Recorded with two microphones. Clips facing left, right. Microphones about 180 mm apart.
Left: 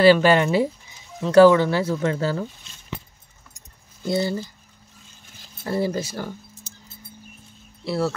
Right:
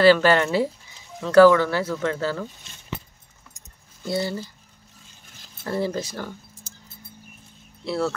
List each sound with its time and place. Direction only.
0.0 s speech: 15° left (ahead or behind)
4.1 s speech: 20° left (ahead or behind)
5.6 s speech: 10° left (ahead or behind)
7.8 s speech: 5° left (ahead or behind)